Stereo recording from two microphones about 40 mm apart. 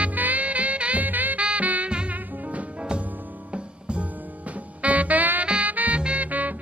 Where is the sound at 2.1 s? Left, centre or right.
Right.